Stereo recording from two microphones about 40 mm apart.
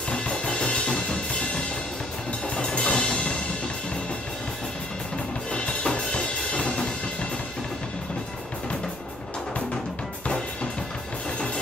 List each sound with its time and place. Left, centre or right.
0.1 s drum kit: left
0.9 s drum: left
2.4 s music: left
5.5 s drum: left
11.3 s drum: left